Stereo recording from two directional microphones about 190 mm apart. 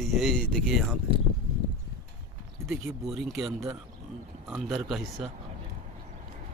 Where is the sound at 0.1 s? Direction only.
Centre (ahead or behind).